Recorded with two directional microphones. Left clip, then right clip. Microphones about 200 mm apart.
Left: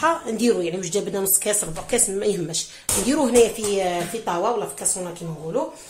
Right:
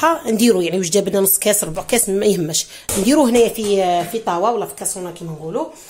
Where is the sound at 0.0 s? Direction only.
50° right (ahead or behind).